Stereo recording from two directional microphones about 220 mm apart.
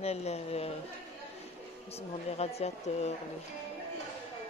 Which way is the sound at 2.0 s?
30° left (ahead or behind).